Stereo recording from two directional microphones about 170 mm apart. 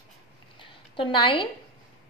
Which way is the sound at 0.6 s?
30° left (ahead or behind).